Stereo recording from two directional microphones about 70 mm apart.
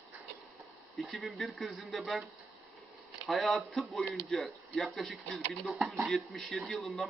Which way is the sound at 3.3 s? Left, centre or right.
Centre.